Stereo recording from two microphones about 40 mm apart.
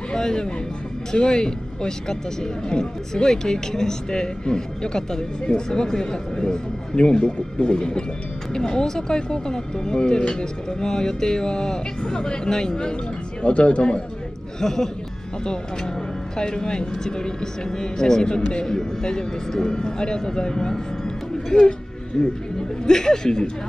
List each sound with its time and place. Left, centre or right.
0.1 s speech: centre
14.6 s speech: centre
16.3 s speech: centre